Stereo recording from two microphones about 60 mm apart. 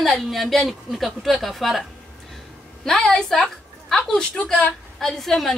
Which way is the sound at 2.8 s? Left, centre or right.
Centre.